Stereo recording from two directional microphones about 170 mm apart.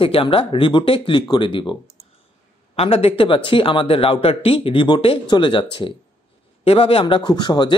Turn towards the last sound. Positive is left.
turn(degrees=25)  # may be behind; listen again after turning